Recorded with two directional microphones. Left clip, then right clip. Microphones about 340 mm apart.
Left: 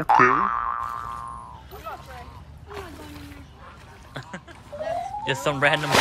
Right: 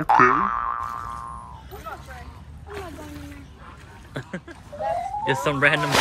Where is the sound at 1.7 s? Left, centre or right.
Centre.